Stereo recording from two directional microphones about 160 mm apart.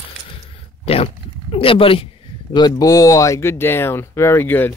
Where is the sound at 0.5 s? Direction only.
40° left (ahead or behind).